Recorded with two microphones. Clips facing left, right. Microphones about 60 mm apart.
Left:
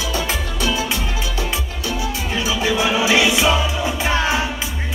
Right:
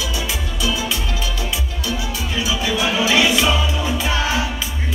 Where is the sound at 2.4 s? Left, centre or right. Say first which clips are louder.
Left 2 dB; left.